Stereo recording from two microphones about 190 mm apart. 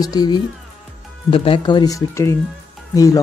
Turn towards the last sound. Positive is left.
turn(degrees=20)  # may be behind; listen again after turning